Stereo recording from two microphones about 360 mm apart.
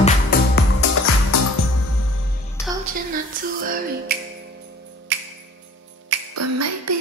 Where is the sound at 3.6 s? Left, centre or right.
Right.